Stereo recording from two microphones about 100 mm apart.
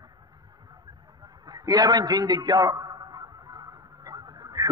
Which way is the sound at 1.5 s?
40° right (ahead or behind).